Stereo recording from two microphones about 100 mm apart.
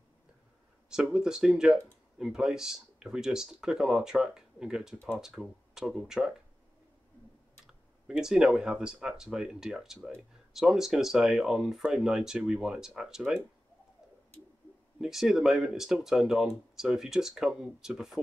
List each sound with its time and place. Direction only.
0.8 s speech: 5° right (ahead or behind)
7.6 s speech: 5° right (ahead or behind)
15.0 s speech: 5° right (ahead or behind)